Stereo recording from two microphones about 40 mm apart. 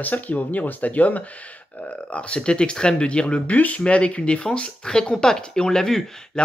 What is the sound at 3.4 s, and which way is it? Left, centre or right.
Speech, left.